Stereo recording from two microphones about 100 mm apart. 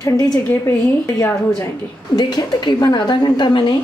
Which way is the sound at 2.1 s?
45° left (ahead or behind).